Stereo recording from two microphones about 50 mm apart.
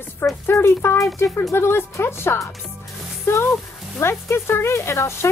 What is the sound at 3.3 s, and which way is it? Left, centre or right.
Speech, left.